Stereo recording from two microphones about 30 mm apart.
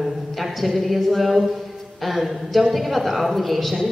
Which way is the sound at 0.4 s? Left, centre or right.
Centre.